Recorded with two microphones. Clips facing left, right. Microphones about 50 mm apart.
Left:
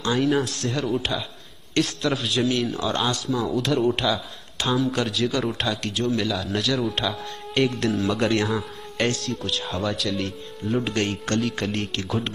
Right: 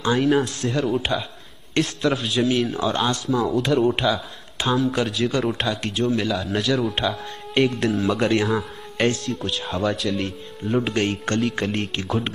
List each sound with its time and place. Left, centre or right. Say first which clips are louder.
0.1 s speech: right 2 dB; centre
10.8 s speech: right 4 dB; centre